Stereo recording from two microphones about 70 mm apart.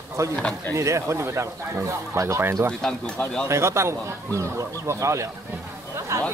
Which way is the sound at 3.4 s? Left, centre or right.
Right.